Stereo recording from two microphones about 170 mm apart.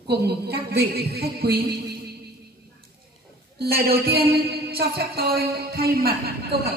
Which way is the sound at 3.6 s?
65° right (ahead or behind).